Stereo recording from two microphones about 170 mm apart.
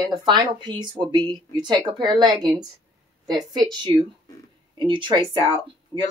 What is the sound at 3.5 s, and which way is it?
Speech, 25° right (ahead or behind).